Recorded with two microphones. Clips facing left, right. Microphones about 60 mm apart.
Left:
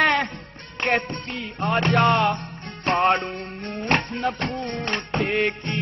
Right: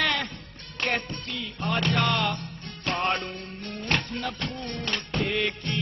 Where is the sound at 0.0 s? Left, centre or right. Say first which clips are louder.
Left 7 dB; left.